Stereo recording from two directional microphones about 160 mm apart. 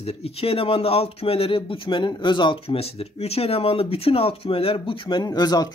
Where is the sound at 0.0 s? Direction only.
40° left (ahead or behind).